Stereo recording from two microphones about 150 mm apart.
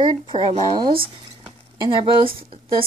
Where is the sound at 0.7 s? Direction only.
35° right (ahead or behind).